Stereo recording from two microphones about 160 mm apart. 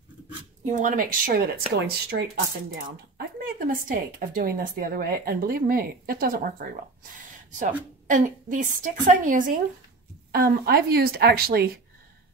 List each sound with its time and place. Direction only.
0.7 s speech: 50° right (ahead or behind)
1.8 s speech: 80° right
3.2 s a woman's voice: 60° right (ahead or behind)
10.3 s speech: 75° right (ahead or behind)